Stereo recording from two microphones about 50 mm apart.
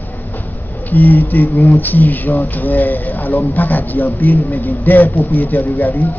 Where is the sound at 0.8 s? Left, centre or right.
Left.